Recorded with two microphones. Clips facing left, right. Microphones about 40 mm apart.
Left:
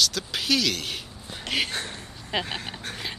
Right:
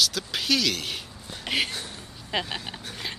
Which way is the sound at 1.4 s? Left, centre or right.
Centre.